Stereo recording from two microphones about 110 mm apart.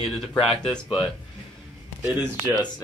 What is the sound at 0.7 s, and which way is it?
Speech, 50° left (ahead or behind).